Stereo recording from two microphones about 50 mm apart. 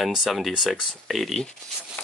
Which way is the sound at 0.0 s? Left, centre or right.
Centre.